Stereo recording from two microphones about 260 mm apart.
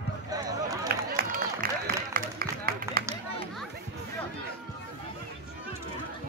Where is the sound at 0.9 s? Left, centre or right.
Right.